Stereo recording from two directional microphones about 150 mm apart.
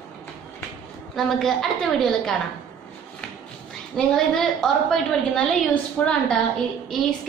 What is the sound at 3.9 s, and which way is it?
A woman's voice, 5° left (ahead or behind).